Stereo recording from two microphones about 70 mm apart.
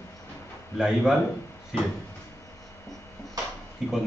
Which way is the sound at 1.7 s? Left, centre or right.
Centre.